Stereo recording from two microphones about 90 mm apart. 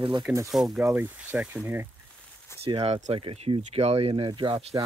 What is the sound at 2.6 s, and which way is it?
Speech, 90° right.